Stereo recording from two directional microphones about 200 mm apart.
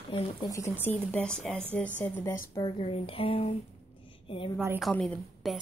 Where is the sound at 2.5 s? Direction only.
25° left (ahead or behind).